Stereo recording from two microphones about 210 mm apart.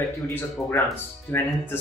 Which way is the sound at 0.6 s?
5° left (ahead or behind).